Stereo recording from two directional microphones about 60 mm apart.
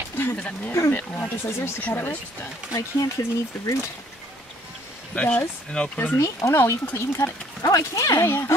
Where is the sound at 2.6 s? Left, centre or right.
Centre.